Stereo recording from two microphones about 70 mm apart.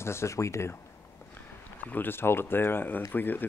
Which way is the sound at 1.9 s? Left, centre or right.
Left.